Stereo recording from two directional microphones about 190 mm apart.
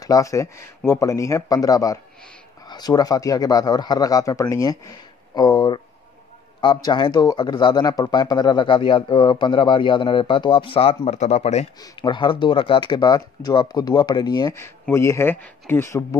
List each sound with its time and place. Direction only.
0.0 s speech: 20° left (ahead or behind); by 11.6 s 35° left (ahead or behind)
11.8 s speech: 25° left (ahead or behind)